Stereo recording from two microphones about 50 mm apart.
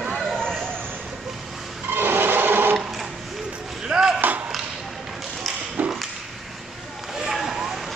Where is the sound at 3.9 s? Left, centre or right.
Centre.